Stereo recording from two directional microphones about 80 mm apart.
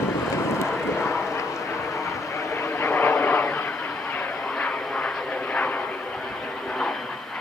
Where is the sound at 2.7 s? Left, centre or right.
Left.